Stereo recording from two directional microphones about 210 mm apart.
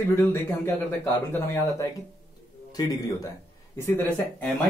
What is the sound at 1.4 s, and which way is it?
Speech, 15° left (ahead or behind).